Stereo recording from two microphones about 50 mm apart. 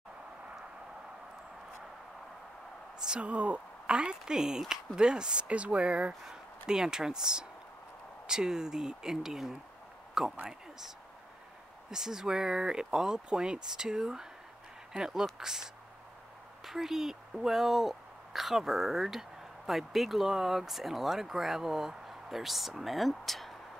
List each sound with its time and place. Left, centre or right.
3.0 s a woman's voice: centre
6.6 s speech: centre
11.9 s speech: centre